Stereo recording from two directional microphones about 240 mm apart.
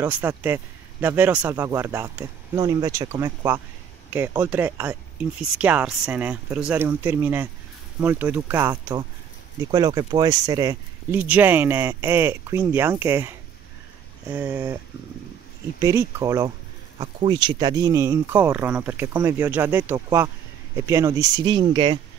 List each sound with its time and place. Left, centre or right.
0.0 s speech: centre
15.8 s speech: centre